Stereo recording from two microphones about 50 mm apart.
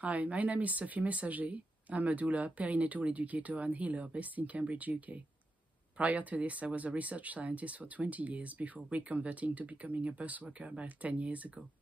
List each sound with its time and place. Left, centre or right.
0.0 s speech: right